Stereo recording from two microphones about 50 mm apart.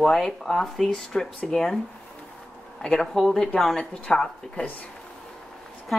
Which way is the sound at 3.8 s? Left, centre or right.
Centre.